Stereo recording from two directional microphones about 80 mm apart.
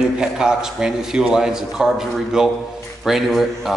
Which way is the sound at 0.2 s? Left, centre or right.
Centre.